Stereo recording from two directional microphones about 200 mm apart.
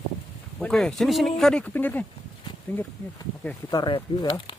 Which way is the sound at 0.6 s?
5° left (ahead or behind).